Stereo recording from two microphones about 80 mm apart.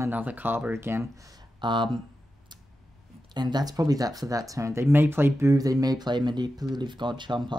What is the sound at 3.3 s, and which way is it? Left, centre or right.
Speech, right.